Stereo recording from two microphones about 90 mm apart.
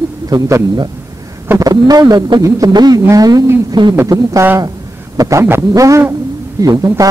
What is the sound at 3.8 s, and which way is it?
Throbbing, 60° right (ahead or behind).